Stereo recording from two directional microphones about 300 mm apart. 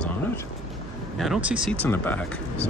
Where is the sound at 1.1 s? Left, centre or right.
Centre.